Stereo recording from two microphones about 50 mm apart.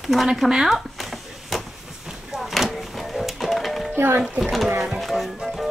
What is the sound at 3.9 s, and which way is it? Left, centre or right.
Music, right.